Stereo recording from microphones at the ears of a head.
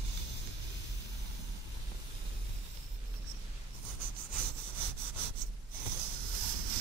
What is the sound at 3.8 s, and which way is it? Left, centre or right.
Sawing, right.